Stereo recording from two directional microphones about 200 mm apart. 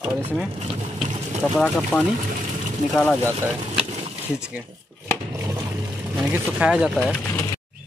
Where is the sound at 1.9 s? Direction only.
5° left (ahead or behind).